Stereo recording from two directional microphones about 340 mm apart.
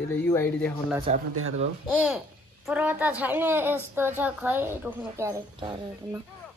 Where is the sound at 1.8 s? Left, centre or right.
Centre.